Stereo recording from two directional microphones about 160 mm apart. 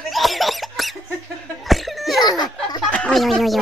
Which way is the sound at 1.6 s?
Centre (ahead or behind).